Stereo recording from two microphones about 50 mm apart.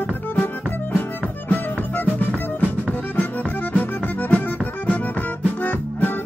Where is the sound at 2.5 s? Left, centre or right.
Left.